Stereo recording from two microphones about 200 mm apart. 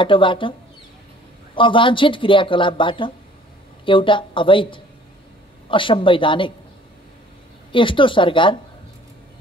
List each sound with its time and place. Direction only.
0.0 s speech: 25° left (ahead or behind)
7.7 s speech: 25° left (ahead or behind)